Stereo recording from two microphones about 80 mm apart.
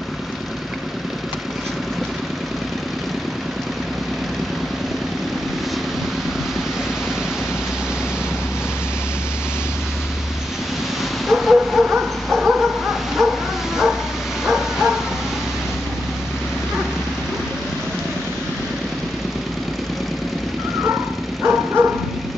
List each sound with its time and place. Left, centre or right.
11.2 s dog: centre
14.4 s bow-wow: centre
21.4 s dog: right